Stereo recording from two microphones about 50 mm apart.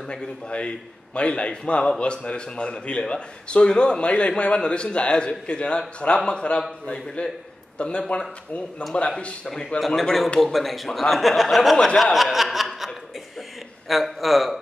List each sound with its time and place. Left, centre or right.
0.1 s a man's voice: centre
9.8 s a man's voice: centre
12.0 s chuckle: centre
13.8 s a man's voice: centre